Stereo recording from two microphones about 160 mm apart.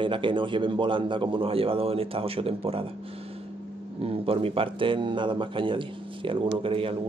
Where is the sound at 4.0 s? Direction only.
35° right (ahead or behind).